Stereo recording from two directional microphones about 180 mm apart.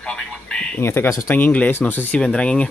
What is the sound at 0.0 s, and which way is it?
Speech, 5° left (ahead or behind).